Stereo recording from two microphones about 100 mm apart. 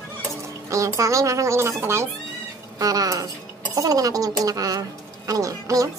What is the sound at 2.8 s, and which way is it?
Speech, 35° right (ahead or behind).